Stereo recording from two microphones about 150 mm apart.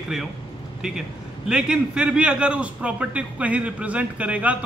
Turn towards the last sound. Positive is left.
turn(degrees=-10)  # may be behind; listen again after turning